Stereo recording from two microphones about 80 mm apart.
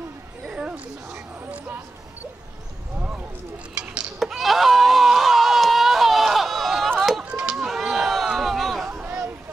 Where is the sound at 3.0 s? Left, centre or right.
Centre.